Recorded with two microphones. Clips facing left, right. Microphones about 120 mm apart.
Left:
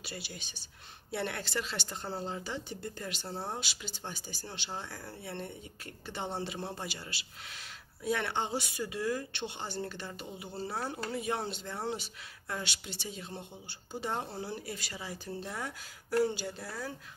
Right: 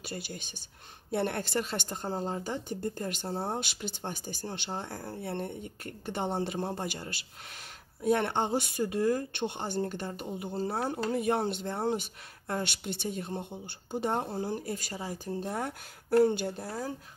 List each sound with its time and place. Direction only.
0.0 s speech: 50° right (ahead or behind)